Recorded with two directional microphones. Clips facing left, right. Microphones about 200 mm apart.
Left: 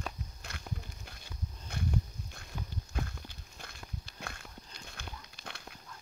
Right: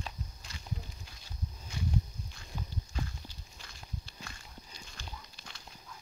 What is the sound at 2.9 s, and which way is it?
Walk, 55° left (ahead or behind).